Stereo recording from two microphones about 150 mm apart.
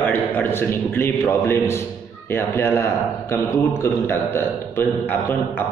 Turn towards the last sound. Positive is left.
turn(degrees=15)  # may be behind; listen again after turning